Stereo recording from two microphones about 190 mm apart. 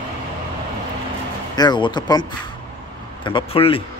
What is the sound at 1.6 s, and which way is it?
Speech, 25° left (ahead or behind).